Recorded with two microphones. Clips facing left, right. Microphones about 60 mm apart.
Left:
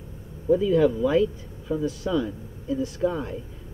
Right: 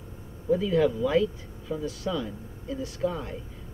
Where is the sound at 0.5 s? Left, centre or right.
Centre.